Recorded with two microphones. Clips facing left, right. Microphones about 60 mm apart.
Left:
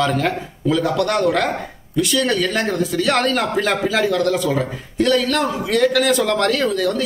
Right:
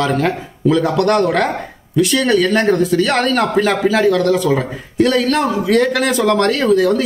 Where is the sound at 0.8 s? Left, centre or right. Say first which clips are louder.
Right 2 dB; right.